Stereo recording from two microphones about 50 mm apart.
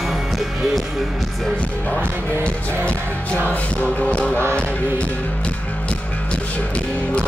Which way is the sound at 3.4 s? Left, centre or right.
Left.